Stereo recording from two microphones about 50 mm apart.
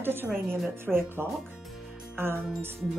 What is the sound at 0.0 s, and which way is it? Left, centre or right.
A woman's voice, right.